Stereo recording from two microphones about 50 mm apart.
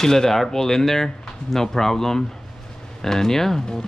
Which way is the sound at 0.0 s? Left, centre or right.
Centre.